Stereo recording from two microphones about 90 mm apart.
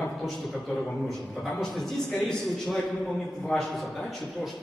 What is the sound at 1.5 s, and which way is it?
A man's voice, 5° left (ahead or behind).